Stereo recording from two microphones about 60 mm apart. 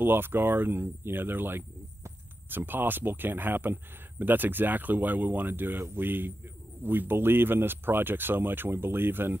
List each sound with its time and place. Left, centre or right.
0.0 s speech: right